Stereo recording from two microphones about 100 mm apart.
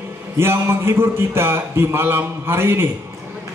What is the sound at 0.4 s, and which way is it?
A man's voice, 25° right (ahead or behind).